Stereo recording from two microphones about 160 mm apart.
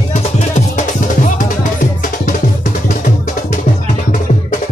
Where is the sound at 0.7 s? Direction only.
50° left (ahead or behind).